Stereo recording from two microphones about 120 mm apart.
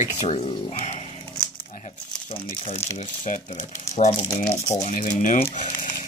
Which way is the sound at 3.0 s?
90° left.